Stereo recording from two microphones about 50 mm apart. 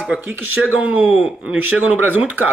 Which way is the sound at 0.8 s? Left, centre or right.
Right.